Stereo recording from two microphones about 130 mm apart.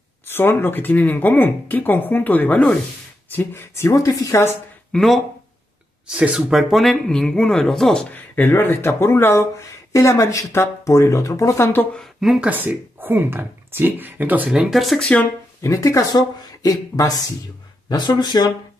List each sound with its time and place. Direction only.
0.3 s speech: 15° left (ahead or behind)
4.9 s speech: centre (ahead or behind)
12.0 s speech: centre (ahead or behind)
15.6 s speech: 25° left (ahead or behind)